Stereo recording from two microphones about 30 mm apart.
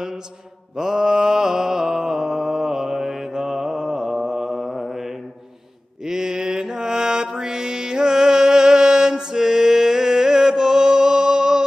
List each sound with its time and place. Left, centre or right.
0.7 s mantra: centre
4.6 s mantra: centre
6.0 s mantra: centre